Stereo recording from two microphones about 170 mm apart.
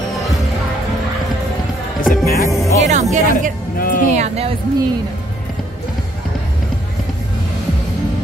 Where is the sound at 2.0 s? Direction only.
60° left (ahead or behind).